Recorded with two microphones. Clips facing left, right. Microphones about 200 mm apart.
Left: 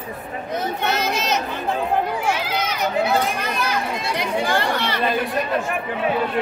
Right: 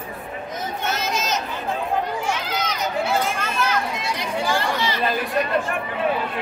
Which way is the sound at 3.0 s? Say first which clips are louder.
Left 2 dB; 15° left (ahead or behind).